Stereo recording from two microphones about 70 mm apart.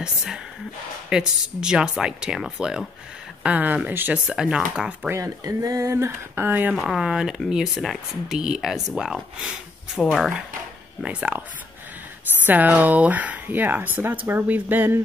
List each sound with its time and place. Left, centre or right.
0.0 s speech: centre
3.4 s speech: right
4.1 s speech: centre
5.1 s speech: right
6.7 s speech: centre
11.1 s speech: right
12.4 s speech: right